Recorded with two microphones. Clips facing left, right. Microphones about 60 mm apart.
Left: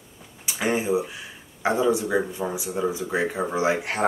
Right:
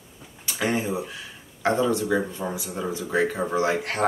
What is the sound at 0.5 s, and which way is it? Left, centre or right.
Speech, centre.